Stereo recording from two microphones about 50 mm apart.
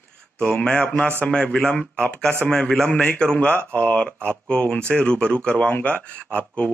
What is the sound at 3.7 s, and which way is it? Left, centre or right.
Speech, left.